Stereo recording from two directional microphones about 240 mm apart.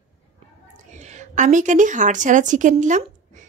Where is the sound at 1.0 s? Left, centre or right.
Right.